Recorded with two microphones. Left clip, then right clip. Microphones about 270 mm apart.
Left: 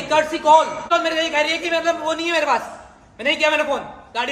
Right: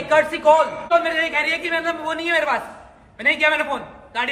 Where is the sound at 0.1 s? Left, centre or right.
Centre.